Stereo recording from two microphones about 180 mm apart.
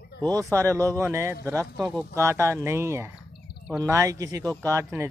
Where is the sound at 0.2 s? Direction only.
20° right (ahead or behind).